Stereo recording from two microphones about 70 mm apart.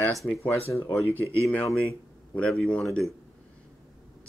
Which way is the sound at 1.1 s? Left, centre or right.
Right.